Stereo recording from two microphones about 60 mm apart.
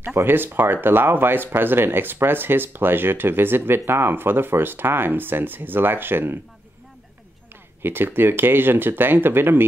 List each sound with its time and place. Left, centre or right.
0.0 s speech: right
7.8 s speech: right